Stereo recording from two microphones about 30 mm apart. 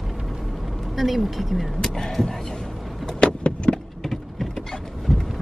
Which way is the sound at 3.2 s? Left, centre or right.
Left.